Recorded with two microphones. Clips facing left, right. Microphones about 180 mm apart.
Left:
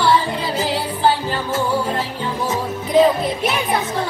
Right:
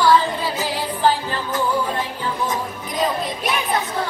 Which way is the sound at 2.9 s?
25° left (ahead or behind).